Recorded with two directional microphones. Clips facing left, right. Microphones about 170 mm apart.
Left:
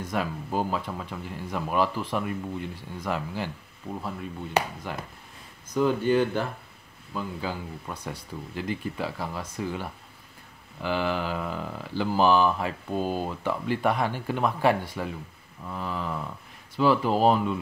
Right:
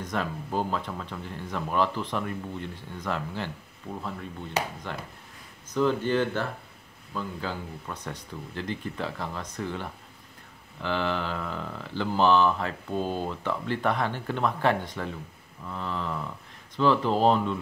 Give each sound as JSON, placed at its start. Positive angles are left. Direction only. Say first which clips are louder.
{"t": 0.0, "sound": "speech", "louder": "left 1 dB", "side_deg": 10}
{"t": 4.6, "sound": "speech", "louder": "left 4 dB", "side_deg": 60}
{"t": 5.7, "sound": "speech", "louder": "left 2 dB", "side_deg": 10}